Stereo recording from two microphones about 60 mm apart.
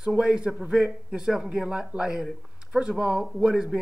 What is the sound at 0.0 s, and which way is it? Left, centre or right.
Speech, centre.